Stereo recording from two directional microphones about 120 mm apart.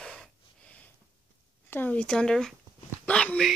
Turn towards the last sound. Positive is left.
turn(degrees=5)  # may be behind; listen again after turning